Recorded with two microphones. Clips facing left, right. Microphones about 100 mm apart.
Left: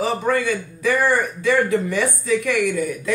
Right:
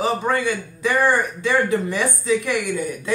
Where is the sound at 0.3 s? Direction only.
25° right (ahead or behind).